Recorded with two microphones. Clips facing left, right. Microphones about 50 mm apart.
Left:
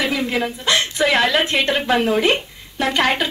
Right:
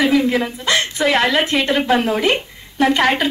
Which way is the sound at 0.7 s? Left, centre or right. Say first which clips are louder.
Right 1 dB; right.